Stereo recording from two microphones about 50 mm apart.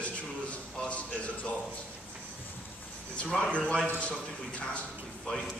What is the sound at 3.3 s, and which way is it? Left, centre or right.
Speech, centre.